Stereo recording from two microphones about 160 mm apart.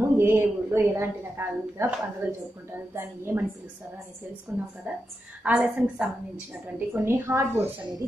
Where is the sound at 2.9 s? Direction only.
15° right (ahead or behind).